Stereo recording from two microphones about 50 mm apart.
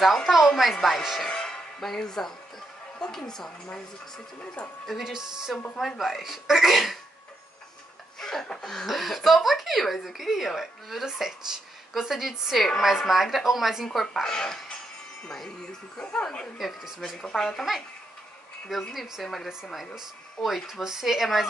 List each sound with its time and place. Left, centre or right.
0.0 s speech: centre
1.3 s a woman's voice: centre
4.8 s speech: centre
8.2 s a sound: centre
8.8 s a woman's voice: centre
16.2 s a woman's voice: centre
16.5 s speech: centre
17.2 s a woman's voice: centre
18.7 s speech: centre